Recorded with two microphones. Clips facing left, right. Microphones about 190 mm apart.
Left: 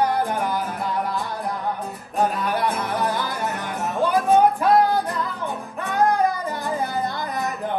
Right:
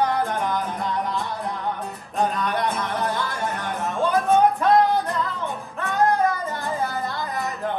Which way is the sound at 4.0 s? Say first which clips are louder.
Left 1 dB; centre (ahead or behind).